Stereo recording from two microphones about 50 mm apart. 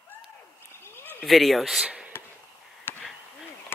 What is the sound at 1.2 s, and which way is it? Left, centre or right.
Speech, centre.